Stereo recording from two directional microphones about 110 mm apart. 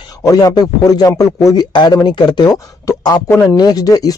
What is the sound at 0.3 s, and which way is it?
Speech, 35° left (ahead or behind).